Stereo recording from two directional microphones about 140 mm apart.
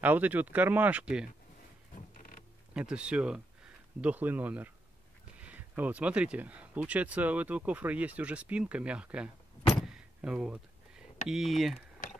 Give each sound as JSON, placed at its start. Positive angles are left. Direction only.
{"t": 0.0, "sound": "speech", "side_deg": -10}
{"t": 2.1, "sound": "creak", "side_deg": 70}
{"t": 2.7, "sound": "speech", "side_deg": -10}
{"t": 9.8, "sound": "a sound", "side_deg": -5}
{"t": 11.2, "sound": "speech", "side_deg": 0}